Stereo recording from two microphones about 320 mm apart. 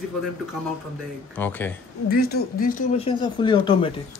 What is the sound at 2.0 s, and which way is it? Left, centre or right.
Speech, left.